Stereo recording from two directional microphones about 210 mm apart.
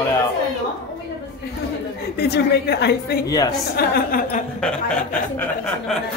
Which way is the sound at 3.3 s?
15° left (ahead or behind).